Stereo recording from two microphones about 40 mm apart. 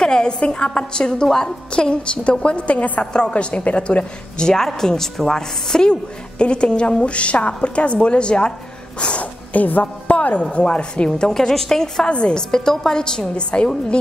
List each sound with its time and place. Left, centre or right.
0.0 s a woman's voice: centre
4.4 s a woman's voice: centre
11.1 s a woman's voice: centre
12.1 s a woman's voice: left
12.4 s a woman's voice: centre